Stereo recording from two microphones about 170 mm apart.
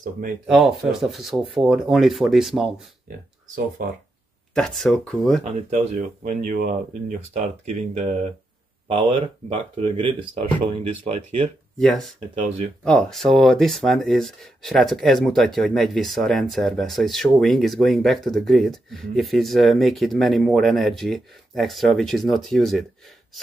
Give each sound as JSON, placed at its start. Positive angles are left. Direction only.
{"t": 0.5, "sound": "speech", "side_deg": -5}
{"t": 3.4, "sound": "speech", "side_deg": -50}
{"t": 4.6, "sound": "speech", "side_deg": 5}
{"t": 5.4, "sound": "speech", "side_deg": -40}
{"t": 7.1, "sound": "speech", "side_deg": -45}
{"t": 11.8, "sound": "speech", "side_deg": 5}